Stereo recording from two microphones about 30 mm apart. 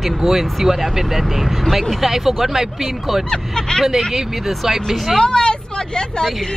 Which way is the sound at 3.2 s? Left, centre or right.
Left.